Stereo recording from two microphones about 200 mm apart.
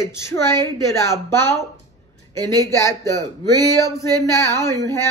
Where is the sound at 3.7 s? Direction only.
15° left (ahead or behind).